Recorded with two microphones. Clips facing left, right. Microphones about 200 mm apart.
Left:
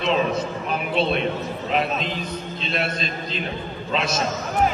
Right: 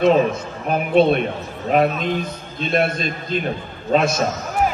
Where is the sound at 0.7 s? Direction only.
50° right (ahead or behind).